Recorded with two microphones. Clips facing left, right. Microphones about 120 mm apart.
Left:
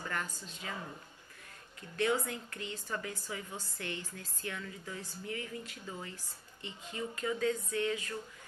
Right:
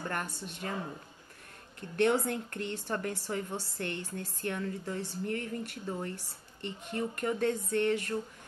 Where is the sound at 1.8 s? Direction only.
65° right (ahead or behind).